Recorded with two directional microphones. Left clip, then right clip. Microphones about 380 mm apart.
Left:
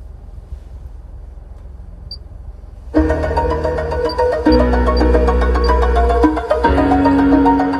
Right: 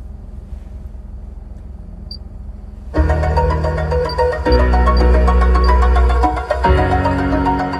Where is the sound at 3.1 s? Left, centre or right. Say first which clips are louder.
Left 1 dB; left.